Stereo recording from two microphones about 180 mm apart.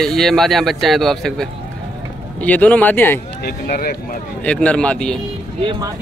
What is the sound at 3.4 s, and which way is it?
Speech, 55° left (ahead or behind).